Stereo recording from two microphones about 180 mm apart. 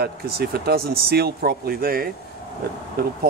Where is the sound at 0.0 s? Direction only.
60° right (ahead or behind).